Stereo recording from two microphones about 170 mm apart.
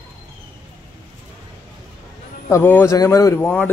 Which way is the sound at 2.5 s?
15° left (ahead or behind).